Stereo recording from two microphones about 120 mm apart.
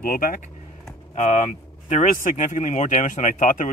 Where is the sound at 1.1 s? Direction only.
90° left.